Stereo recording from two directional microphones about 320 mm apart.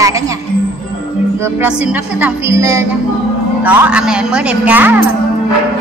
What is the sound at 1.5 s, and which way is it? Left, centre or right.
A woman's voice, centre.